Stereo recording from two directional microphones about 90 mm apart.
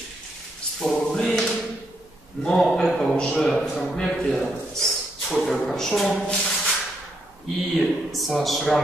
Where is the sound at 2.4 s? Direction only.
5° left (ahead or behind).